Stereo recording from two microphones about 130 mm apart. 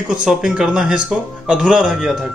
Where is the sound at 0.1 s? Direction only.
5° right (ahead or behind).